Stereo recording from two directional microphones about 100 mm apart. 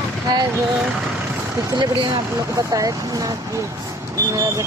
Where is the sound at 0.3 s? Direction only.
40° right (ahead or behind).